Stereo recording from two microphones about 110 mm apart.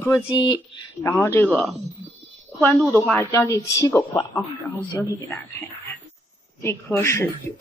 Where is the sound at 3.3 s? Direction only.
30° left (ahead or behind).